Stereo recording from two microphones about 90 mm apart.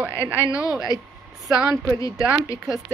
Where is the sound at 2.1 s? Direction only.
10° right (ahead or behind).